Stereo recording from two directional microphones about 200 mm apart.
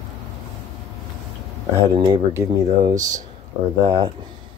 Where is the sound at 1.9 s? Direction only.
20° right (ahead or behind).